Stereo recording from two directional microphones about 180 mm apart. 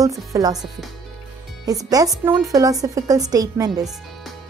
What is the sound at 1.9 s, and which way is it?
A woman's voice, 20° right (ahead or behind).